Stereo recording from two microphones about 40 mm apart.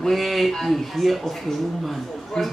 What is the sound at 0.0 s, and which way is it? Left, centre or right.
Speech, centre.